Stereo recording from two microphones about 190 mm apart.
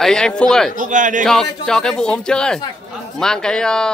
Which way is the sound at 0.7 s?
40° right (ahead or behind).